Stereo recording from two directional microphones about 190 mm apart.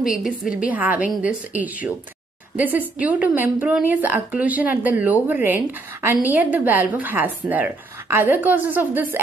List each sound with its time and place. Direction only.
0.1 s a woman's voice: 5° right (ahead or behind)